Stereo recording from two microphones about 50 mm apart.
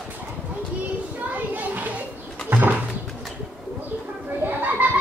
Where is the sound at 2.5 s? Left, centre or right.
Right.